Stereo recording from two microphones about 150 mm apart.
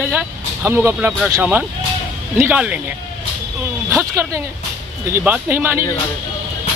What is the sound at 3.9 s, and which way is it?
Speech, 20° right (ahead or behind).